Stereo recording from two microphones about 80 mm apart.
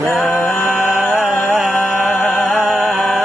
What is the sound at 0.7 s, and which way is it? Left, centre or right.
Music, centre.